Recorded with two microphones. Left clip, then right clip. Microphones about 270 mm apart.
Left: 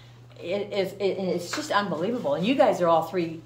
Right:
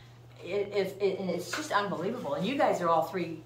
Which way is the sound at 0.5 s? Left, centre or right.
Left.